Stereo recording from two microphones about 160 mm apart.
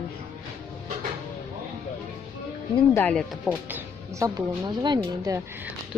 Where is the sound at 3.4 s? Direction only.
5° right (ahead or behind).